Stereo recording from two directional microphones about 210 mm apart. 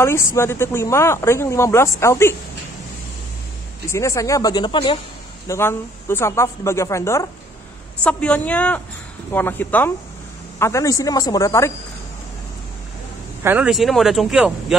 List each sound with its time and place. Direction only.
0.0 s speech: 10° left (ahead or behind)
3.9 s speech: 15° left (ahead or behind)
5.5 s speech: 10° left (ahead or behind)
13.4 s speech: 10° right (ahead or behind)